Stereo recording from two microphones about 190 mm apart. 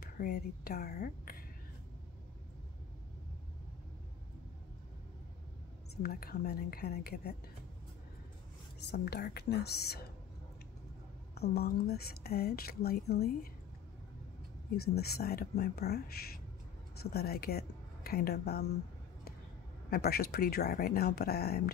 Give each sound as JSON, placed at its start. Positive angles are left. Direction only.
{"t": 0.0, "sound": "speech", "side_deg": 55}
{"t": 6.0, "sound": "a woman's voice", "side_deg": 55}
{"t": 8.7, "sound": "speech", "side_deg": 60}
{"t": 11.3, "sound": "speech", "side_deg": 55}
{"t": 15.0, "sound": "speech", "side_deg": 55}
{"t": 19.9, "sound": "speech", "side_deg": 55}